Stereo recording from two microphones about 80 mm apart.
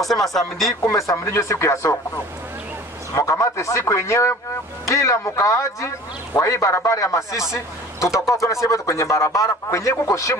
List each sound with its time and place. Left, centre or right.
0.0 s speech: centre
0.8 s a man's voice: left
3.2 s a man's voice: left